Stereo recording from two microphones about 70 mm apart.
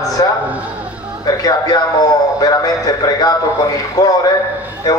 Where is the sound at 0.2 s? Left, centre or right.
Left.